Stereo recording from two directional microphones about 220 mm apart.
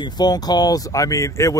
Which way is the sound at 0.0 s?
20° left (ahead or behind).